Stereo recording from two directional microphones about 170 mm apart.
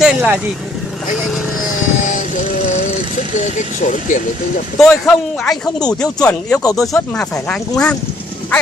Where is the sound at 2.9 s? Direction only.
45° left (ahead or behind).